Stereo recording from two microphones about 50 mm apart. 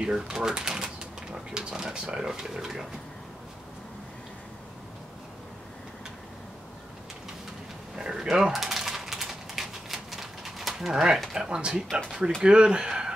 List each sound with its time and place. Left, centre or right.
0.0 s speech: centre
7.9 s typing: centre
11.3 s speech: centre